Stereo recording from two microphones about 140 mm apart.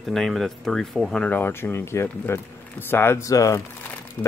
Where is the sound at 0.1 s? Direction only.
Centre (ahead or behind).